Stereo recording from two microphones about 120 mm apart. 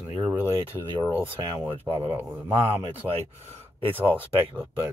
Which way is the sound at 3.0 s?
Centre (ahead or behind).